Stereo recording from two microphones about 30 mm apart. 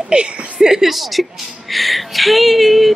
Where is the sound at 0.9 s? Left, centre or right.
Centre.